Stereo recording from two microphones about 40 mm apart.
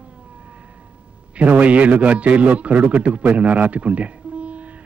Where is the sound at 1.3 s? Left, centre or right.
Right.